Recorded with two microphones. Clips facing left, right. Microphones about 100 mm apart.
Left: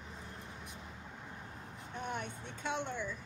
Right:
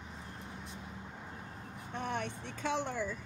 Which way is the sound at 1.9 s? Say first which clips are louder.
Right 3 dB; 85° right.